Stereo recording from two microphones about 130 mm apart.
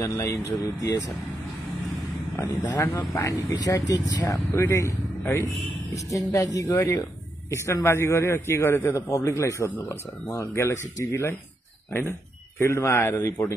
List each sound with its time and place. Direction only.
0.0 s speech: 25° left (ahead or behind)
2.6 s speech: 20° left (ahead or behind)